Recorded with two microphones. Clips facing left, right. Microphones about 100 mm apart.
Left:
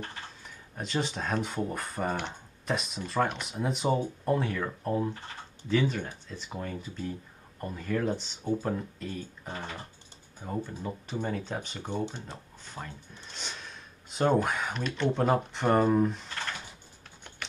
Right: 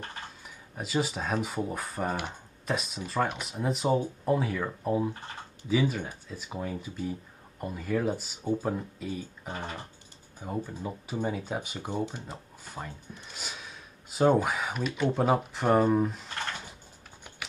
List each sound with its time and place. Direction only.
0.7 s speech: 5° right (ahead or behind)
9.5 s speech: 15° right (ahead or behind)
10.4 s speech: 5° right (ahead or behind)